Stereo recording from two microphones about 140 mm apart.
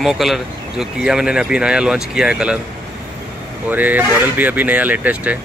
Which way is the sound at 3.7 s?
10° right (ahead or behind).